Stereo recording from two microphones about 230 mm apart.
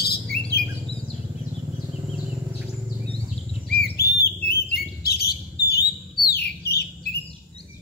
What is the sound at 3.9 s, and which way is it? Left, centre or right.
Bird, left.